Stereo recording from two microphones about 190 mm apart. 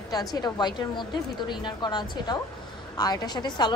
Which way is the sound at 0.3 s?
20° left (ahead or behind).